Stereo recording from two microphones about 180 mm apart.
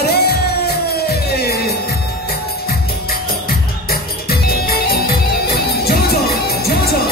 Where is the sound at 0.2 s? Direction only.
60° left (ahead or behind).